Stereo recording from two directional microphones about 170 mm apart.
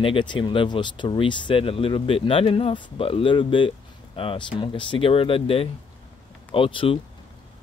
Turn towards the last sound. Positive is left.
turn(degrees=30)  # may be behind; listen again after turning